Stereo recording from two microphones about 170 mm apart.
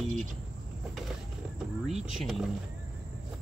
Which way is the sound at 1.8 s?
Centre (ahead or behind).